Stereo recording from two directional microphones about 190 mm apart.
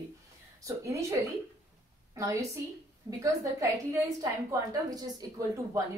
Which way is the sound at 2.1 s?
15° right (ahead or behind).